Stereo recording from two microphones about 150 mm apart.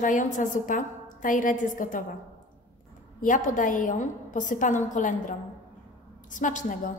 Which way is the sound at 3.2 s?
60° left (ahead or behind).